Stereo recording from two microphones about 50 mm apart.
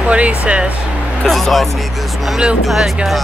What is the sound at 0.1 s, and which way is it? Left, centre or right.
Speech, right.